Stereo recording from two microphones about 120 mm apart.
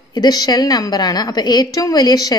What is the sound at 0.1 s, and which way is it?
A woman's voice, 35° left (ahead or behind).